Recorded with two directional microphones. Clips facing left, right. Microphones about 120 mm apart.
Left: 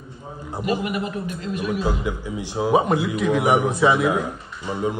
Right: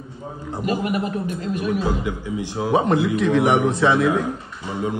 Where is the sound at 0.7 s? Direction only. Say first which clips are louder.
Right 2 dB; 40° right (ahead or behind).